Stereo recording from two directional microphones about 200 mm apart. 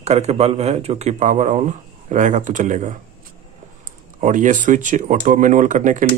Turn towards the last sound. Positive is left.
turn(degrees=-40)  # may be behind; listen again after turning